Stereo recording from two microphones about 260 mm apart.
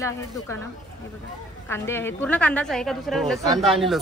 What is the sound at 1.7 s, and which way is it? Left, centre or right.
Speech, centre.